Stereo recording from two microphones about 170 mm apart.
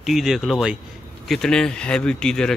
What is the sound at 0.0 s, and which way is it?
Speech, centre (ahead or behind).